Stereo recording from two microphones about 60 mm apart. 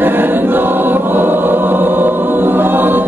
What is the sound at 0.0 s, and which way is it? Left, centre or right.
Choir, right.